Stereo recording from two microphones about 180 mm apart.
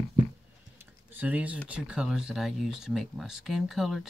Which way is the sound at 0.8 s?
10° right (ahead or behind).